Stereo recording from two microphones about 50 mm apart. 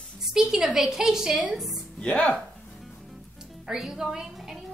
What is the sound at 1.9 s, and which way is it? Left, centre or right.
Speech, left.